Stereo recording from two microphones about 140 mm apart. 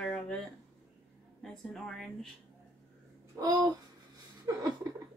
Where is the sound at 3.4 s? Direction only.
25° right (ahead or behind).